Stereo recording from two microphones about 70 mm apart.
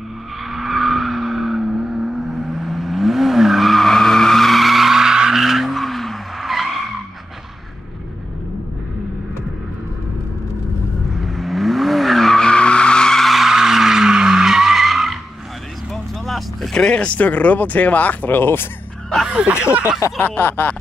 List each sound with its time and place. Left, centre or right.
0.5 s vehicle: centre
11.1 s vehicle: centre; by 18.7 s left
19.2 s speech: centre
20.2 s a sound: left